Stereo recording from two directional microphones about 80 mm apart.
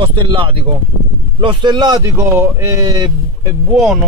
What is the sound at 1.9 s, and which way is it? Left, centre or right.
Speech, right.